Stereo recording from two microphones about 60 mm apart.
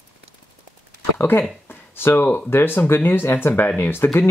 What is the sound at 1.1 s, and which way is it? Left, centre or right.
Speech, left.